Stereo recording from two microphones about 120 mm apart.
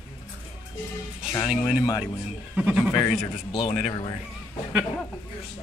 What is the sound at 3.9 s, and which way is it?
Speech, 35° left (ahead or behind).